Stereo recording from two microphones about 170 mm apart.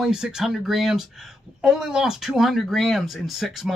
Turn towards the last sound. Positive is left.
turn(degrees=0)  # may be behind; listen again after turning